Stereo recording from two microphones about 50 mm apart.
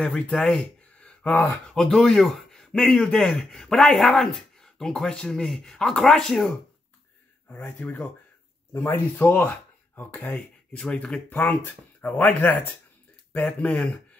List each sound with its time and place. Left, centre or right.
0.0 s speech: left
1.9 s speech: centre
7.8 s speech: left
8.8 s speech: left
9.3 s speech: left
10.8 s speech: centre
11.4 s speech: left